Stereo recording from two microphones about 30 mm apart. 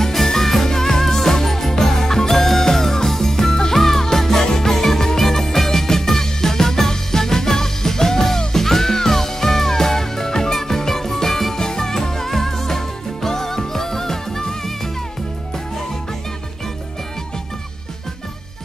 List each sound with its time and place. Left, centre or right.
0.0 s music: centre
11.5 s music: left